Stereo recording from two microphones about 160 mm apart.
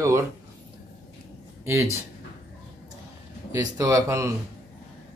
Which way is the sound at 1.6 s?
15° right (ahead or behind).